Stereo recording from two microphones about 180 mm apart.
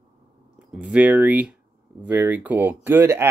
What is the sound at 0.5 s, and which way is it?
Speech, 5° right (ahead or behind).